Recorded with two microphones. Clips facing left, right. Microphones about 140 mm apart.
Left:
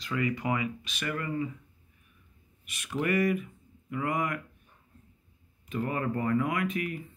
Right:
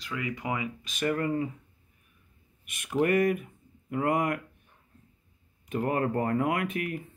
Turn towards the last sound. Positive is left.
turn(degrees=-55)  # may be behind; listen again after turning